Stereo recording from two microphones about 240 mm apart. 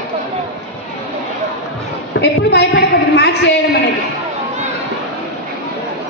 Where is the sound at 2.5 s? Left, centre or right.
Left.